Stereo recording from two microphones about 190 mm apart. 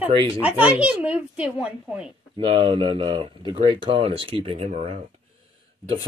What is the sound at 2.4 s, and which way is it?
Speech, 30° right (ahead or behind).